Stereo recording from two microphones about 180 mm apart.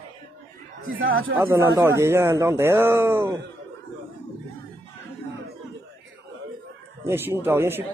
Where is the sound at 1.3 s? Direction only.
15° right (ahead or behind).